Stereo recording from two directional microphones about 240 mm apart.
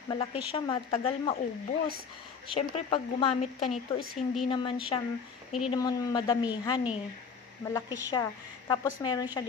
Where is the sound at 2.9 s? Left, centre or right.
Left.